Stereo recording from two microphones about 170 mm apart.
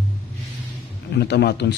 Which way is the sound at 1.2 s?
70° left (ahead or behind).